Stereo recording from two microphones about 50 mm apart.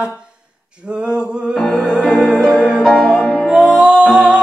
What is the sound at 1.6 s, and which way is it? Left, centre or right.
Music, centre.